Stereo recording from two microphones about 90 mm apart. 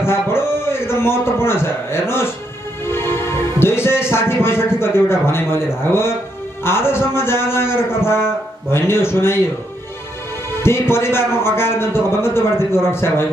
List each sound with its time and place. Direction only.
0.0 s a man's voice: 25° left (ahead or behind)
10.6 s a man's voice: 30° left (ahead or behind)